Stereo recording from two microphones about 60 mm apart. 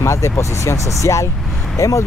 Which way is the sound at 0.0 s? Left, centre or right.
Left.